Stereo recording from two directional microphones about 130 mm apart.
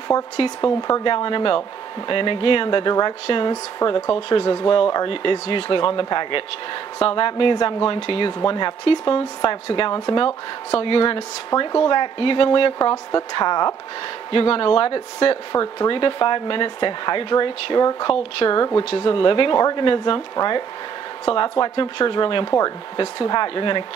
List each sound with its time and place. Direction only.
0.7 s speech: 35° left (ahead or behind)
14.3 s speech: 45° left (ahead or behind)